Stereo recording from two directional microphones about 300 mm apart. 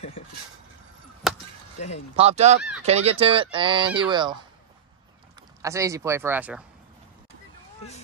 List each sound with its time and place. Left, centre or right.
1.2 s chop: centre
2.1 s speech: right
5.6 s speech: centre